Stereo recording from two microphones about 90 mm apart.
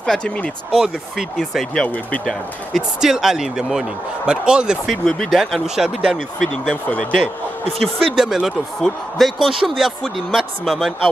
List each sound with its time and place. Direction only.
0.0 s speech: 10° left (ahead or behind)
0.7 s speech: 5° right (ahead or behind)
5.0 s speech: 5° left (ahead or behind)
6.5 s speech: 10° left (ahead or behind)
7.2 s speech: 90° right
8.2 s speech: 5° right (ahead or behind)